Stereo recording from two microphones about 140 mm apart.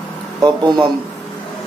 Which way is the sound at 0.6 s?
30° right (ahead or behind).